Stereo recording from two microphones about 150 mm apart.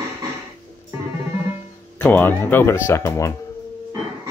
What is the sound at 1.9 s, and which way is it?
Speech, 15° left (ahead or behind).